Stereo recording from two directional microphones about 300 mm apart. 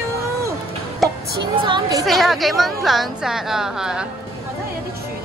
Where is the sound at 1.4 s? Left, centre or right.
Centre.